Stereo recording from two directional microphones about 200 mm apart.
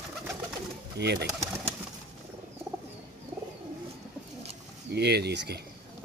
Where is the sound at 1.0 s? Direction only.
55° right (ahead or behind).